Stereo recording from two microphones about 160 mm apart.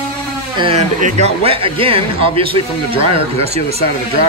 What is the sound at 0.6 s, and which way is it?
A man's voice, 40° right (ahead or behind).